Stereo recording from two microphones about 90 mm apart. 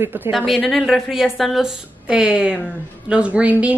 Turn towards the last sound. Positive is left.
turn(degrees=-15)  # may be behind; listen again after turning